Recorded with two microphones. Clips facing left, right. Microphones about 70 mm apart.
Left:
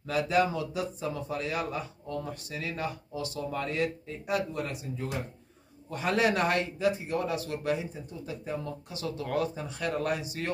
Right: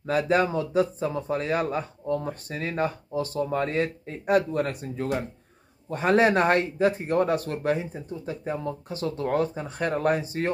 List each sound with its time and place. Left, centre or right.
0.0 s a man's voice: right
5.9 s a man's voice: right